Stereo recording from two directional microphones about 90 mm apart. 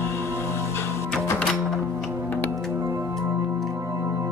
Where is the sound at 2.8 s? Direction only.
30° right (ahead or behind).